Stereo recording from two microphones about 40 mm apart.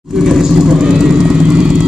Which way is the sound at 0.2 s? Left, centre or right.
Centre.